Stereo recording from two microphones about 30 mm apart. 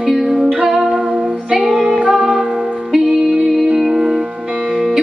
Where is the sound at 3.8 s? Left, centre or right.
Centre.